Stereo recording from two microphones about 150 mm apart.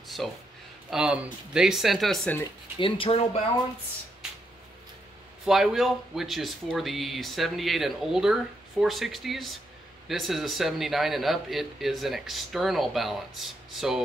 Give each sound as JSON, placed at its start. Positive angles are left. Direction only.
{"t": 0.2, "sound": "speech", "side_deg": 0}
{"t": 2.8, "sound": "speech", "side_deg": 40}
{"t": 5.4, "sound": "speech", "side_deg": -5}